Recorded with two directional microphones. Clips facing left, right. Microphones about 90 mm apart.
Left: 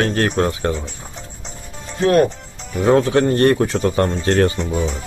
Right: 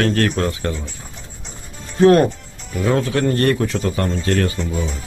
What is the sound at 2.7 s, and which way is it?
Speech, 35° left (ahead or behind).